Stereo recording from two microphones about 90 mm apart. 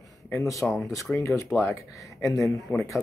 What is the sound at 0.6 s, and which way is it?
Speech, centre (ahead or behind).